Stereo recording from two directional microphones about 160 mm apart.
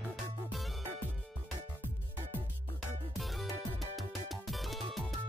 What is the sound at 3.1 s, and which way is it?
Music, centre (ahead or behind).